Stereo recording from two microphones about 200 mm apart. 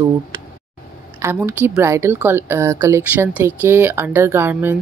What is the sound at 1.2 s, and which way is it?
Speech, 10° right (ahead or behind).